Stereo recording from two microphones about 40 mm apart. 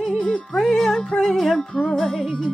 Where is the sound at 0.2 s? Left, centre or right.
Left.